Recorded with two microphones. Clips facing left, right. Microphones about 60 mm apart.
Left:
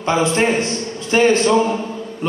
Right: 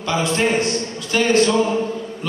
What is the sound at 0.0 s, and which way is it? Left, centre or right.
A man's voice, left.